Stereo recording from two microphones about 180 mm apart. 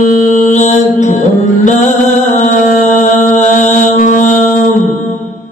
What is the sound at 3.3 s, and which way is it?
Mantra, 40° left (ahead or behind).